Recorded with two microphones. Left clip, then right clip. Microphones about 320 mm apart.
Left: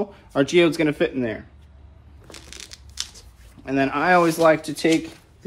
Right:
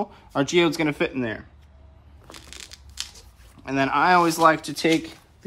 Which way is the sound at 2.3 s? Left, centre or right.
Centre.